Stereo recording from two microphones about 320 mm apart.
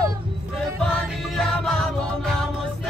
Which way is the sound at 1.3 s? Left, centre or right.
Centre.